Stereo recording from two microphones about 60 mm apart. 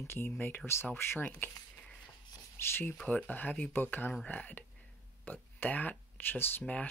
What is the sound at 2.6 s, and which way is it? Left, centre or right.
Speech, left.